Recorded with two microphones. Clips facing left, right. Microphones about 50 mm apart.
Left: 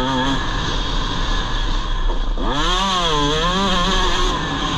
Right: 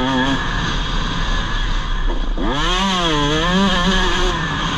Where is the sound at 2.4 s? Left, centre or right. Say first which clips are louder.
Right 1 dB; right.